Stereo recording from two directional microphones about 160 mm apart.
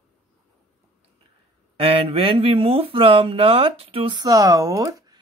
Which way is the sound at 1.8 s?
35° right (ahead or behind).